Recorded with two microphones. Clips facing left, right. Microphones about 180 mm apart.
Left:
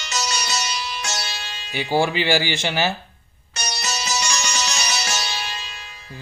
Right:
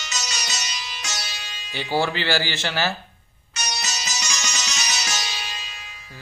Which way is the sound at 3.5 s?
30° left (ahead or behind).